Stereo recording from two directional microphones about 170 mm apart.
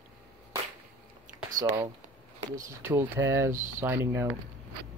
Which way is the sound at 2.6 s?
15° right (ahead or behind).